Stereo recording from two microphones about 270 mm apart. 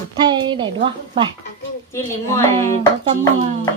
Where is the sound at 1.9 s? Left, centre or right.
Centre.